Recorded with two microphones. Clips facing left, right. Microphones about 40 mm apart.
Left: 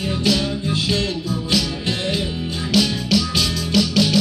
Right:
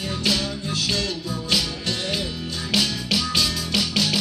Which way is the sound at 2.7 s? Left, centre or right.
Centre.